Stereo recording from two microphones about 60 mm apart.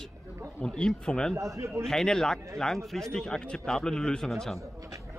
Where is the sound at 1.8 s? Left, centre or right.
Centre.